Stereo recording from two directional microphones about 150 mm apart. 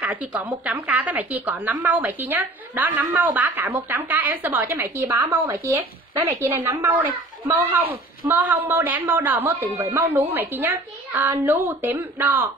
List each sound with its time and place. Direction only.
0.0 s a woman's voice: 10° right (ahead or behind)